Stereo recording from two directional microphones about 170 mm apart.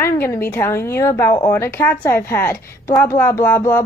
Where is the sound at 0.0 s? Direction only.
15° left (ahead or behind).